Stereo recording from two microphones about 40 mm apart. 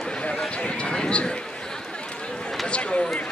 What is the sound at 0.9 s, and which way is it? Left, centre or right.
Run, left.